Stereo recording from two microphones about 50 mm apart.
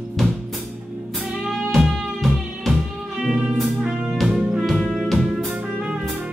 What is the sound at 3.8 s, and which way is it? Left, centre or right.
Music, centre.